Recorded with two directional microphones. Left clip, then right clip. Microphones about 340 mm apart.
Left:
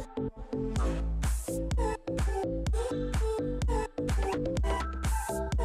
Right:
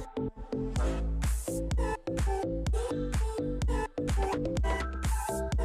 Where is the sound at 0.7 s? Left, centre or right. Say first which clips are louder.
Even; centre.